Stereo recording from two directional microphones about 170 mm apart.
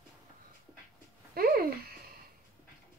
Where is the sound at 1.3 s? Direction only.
60° right (ahead or behind).